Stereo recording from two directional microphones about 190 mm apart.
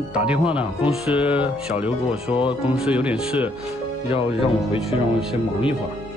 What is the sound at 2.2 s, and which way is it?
Speech, 30° left (ahead or behind).